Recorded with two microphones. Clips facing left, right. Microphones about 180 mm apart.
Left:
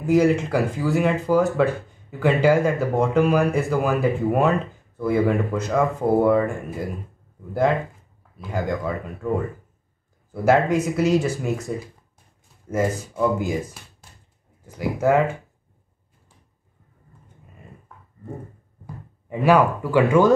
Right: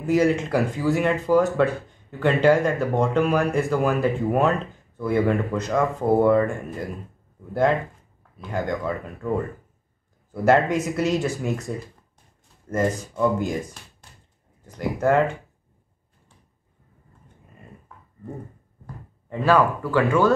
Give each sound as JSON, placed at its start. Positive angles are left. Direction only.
{"t": 0.0, "sound": "speech", "side_deg": 0}
{"t": 8.4, "sound": "speech", "side_deg": 0}
{"t": 10.3, "sound": "speech", "side_deg": 0}
{"t": 14.7, "sound": "speech", "side_deg": 5}
{"t": 19.2, "sound": "speech", "side_deg": 15}